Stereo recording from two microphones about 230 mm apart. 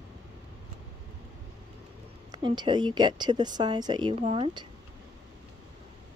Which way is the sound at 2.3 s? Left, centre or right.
Centre.